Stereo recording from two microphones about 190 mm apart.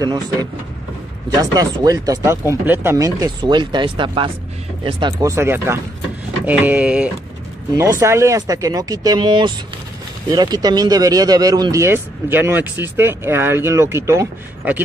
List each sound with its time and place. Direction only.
0.0 s speech: 20° right (ahead or behind)